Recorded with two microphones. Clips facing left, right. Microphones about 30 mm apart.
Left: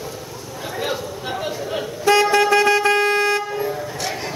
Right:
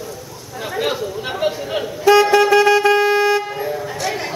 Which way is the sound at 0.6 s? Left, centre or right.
Right.